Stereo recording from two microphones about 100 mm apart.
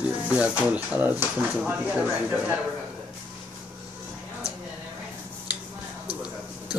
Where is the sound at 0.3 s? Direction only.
15° right (ahead or behind).